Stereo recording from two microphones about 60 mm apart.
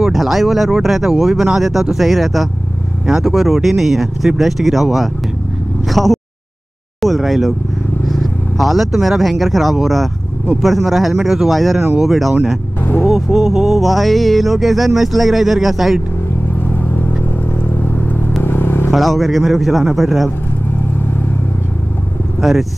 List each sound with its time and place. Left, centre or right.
0.0 s music: centre
5.9 s speech: centre
10.6 s music: centre
17.8 s vehicle: left
18.9 s music: centre
22.4 s speech: centre